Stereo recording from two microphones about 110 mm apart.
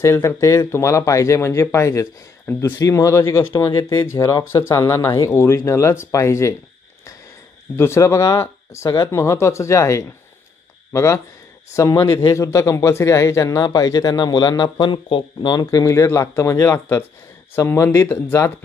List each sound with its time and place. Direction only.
0.0 s a man's voice: 25° left (ahead or behind)
7.7 s a man's voice: 25° left (ahead or behind)